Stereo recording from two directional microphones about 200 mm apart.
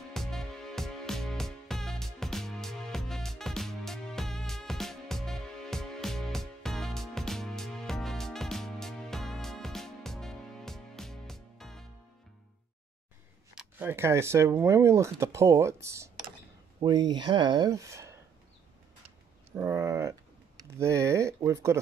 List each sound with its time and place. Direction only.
0.1 s music: centre (ahead or behind)
13.6 s speech: 10° right (ahead or behind)
19.5 s a sound: 15° right (ahead or behind)
20.6 s speech: 15° right (ahead or behind)